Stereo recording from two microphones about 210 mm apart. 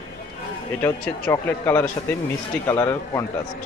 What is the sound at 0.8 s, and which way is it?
A man's voice, 10° left (ahead or behind).